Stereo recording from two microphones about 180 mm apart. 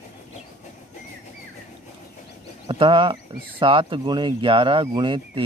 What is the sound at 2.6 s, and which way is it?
Speech, 30° right (ahead or behind).